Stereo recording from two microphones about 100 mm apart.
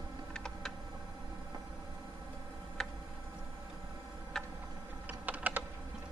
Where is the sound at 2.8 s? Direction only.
5° left (ahead or behind).